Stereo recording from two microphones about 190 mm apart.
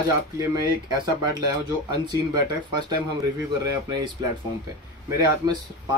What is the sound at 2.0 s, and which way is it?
Speech, 25° right (ahead or behind).